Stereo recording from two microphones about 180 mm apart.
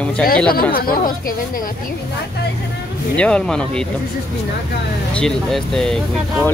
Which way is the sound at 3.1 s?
5° left (ahead or behind).